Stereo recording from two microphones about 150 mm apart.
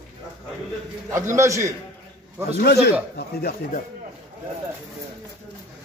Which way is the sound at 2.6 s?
90° left.